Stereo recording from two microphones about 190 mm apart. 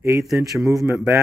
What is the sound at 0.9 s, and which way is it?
Speech, 5° right (ahead or behind).